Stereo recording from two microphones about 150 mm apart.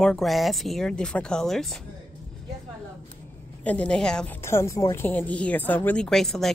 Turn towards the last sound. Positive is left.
turn(degrees=0)  # may be behind; listen again after turning